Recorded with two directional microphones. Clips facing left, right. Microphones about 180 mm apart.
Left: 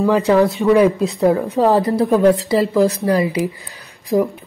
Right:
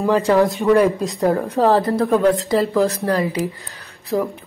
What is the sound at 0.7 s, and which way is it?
A woman's voice, 5° left (ahead or behind).